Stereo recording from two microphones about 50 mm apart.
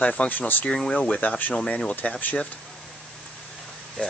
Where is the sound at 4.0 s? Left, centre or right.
Left.